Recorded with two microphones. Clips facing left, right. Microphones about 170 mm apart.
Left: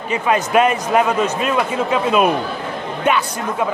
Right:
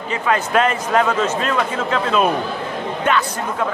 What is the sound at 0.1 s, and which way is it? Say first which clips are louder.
Speech: left 2 dB; 15° left (ahead or behind).